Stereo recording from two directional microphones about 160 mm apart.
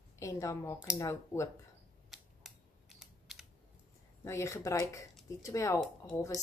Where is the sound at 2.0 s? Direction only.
Centre (ahead or behind).